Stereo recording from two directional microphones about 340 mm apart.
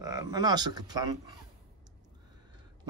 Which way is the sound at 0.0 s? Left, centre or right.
Centre.